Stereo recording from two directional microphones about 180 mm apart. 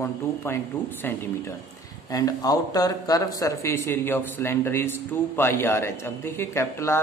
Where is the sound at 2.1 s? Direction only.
20° left (ahead or behind).